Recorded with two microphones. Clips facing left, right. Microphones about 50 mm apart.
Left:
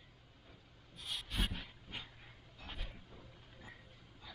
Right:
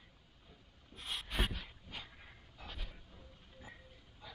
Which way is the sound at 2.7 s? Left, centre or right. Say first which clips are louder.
Left 2 dB; centre.